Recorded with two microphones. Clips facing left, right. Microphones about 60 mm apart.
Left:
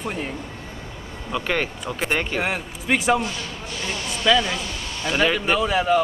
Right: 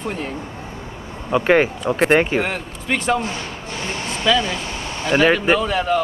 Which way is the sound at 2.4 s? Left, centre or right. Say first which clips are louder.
Even; centre.